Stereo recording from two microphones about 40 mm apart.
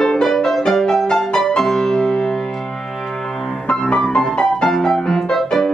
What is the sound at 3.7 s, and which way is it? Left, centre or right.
Music, centre.